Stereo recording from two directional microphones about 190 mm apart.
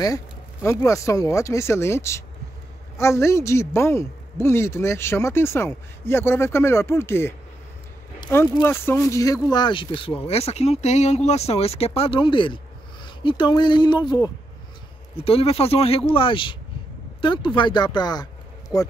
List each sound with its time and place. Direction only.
0.7 s speech: 15° left (ahead or behind)